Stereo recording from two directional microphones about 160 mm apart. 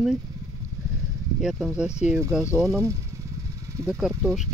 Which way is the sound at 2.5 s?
20° right (ahead or behind).